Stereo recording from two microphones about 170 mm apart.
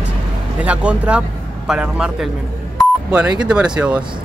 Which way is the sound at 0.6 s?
5° right (ahead or behind).